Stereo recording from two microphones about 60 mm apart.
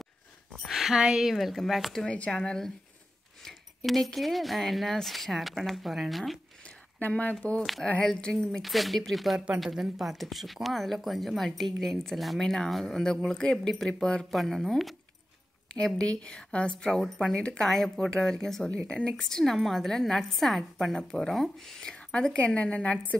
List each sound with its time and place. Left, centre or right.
0.7 s a woman's voice: centre
1.3 s speech: centre
2.0 s speech: centre
7.1 s speech: left
8.0 s speech: centre
14.3 s speech: centre
16.0 s speech: centre
17.6 s speech: centre
20.9 s speech: centre